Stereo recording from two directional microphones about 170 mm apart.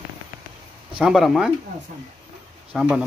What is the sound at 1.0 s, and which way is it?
Speech, centre (ahead or behind).